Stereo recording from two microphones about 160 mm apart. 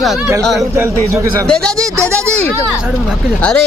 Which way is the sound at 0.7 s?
20° right (ahead or behind).